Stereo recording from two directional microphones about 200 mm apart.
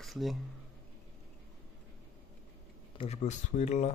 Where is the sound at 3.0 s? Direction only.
35° left (ahead or behind).